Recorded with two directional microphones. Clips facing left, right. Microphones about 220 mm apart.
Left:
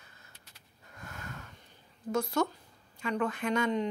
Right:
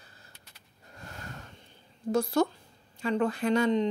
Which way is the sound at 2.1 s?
35° right (ahead or behind).